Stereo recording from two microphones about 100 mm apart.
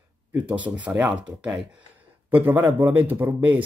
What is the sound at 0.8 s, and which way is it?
Speech, 15° right (ahead or behind).